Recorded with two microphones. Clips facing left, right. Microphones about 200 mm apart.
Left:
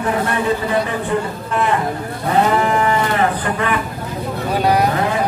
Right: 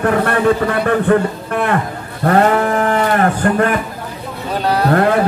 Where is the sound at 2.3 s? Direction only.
55° right (ahead or behind).